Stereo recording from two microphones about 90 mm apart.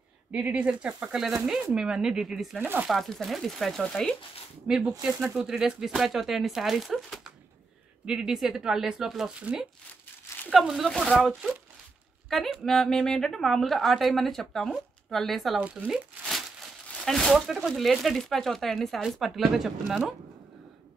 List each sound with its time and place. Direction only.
0.3 s speech: 15° right (ahead or behind)
2.6 s speech: 20° right (ahead or behind)
2.9 s speech: centre (ahead or behind)
15.6 s speech: 15° right (ahead or behind)
15.9 s crumpling: centre (ahead or behind)
16.9 s speech: 5° left (ahead or behind)